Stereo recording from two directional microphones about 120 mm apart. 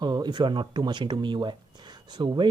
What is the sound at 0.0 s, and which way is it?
Speech, 35° right (ahead or behind).